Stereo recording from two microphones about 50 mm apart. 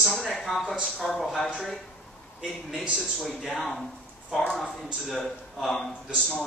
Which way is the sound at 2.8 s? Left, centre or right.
Centre.